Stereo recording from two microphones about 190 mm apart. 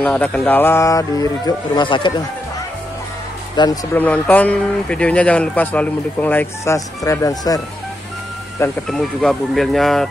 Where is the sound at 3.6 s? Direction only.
20° left (ahead or behind).